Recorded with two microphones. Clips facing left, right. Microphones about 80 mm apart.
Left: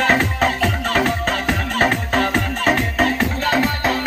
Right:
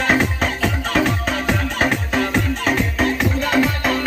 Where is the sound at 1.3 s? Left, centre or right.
Left.